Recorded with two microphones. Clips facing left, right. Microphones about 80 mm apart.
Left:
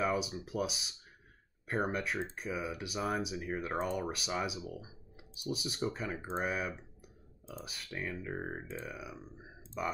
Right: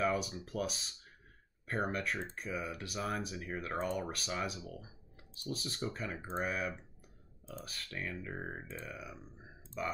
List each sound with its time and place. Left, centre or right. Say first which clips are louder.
0.0 s speech: left 1 dB; centre